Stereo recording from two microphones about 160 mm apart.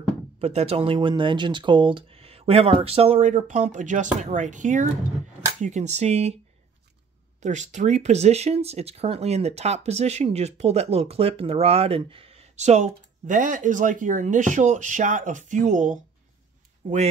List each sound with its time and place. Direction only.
0.4 s speech: 40° right (ahead or behind)
7.4 s speech: 50° right (ahead or behind)